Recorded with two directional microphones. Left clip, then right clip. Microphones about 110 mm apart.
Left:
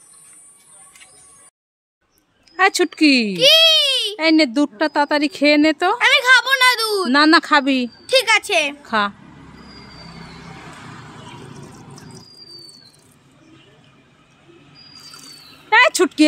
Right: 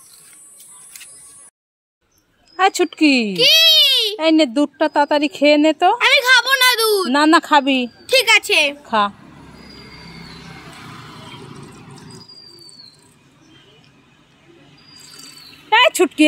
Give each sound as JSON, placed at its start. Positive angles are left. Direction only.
{"t": 2.5, "sound": "a woman's voice", "side_deg": 5}
{"t": 3.3, "sound": "baby cry", "side_deg": 35}
{"t": 4.2, "sound": "a woman's voice", "side_deg": 5}
{"t": 5.9, "sound": "a sound", "side_deg": 30}
{"t": 7.1, "sound": "a woman's voice", "side_deg": 10}
{"t": 8.1, "sound": "a woman's voice", "side_deg": 25}
{"t": 8.8, "sound": "a woman's voice", "side_deg": 10}
{"t": 11.2, "sound": "a sound", "side_deg": 25}
{"t": 15.7, "sound": "a sound", "side_deg": 0}